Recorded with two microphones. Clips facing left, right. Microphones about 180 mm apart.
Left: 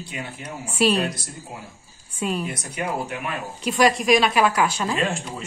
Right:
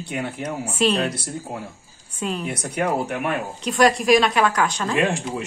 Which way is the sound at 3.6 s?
Centre (ahead or behind).